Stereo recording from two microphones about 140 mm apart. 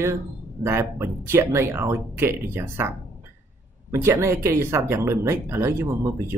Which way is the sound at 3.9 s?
15° right (ahead or behind).